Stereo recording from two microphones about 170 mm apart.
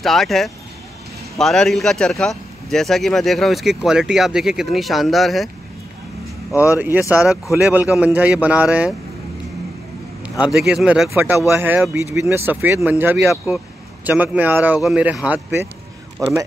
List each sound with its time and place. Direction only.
0.0 s a man's voice: centre (ahead or behind)
6.8 s speech: 10° right (ahead or behind)
10.4 s a man's voice: 5° right (ahead or behind)